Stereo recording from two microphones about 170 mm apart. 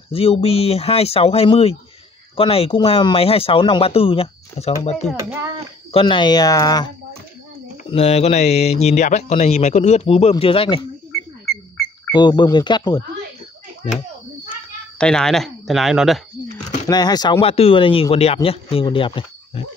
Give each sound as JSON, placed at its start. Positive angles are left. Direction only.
{"t": 0.1, "sound": "speech", "side_deg": 35}
{"t": 7.9, "sound": "speech", "side_deg": 40}
{"t": 12.1, "sound": "speech", "side_deg": 25}
{"t": 15.0, "sound": "speech", "side_deg": 5}
{"t": 16.8, "sound": "speech", "side_deg": 25}